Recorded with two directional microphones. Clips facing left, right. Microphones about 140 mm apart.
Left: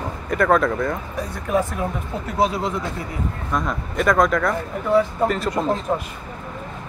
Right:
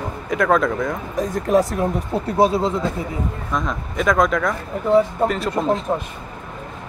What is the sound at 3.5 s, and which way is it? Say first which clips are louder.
Speech: left 1 dB; centre (ahead or behind).